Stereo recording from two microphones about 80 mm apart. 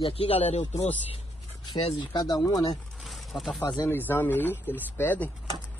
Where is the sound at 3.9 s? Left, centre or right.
Left.